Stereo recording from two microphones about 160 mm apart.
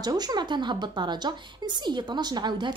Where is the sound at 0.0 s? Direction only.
25° right (ahead or behind).